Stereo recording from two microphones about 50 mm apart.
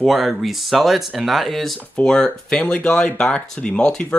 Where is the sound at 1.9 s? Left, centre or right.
Centre.